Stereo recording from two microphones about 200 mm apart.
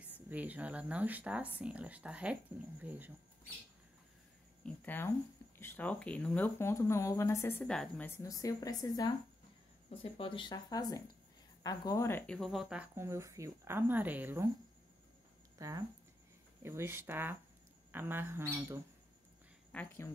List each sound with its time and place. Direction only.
0.0 s speech: 10° right (ahead or behind)
4.6 s speech: 10° left (ahead or behind); by 14.5 s 10° right (ahead or behind)
15.5 s a sound: 15° right (ahead or behind)
16.6 s speech: 10° right (ahead or behind)
19.7 s speech: 5° left (ahead or behind)